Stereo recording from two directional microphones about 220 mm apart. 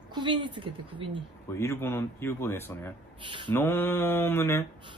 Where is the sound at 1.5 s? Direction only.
10° left (ahead or behind).